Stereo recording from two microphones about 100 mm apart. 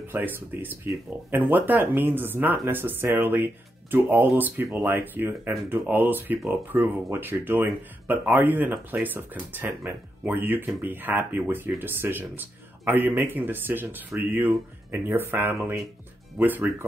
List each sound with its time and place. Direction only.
0.1 s speech: 20° right (ahead or behind)